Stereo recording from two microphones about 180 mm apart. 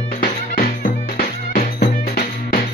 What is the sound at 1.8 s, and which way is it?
Music, 60° left (ahead or behind).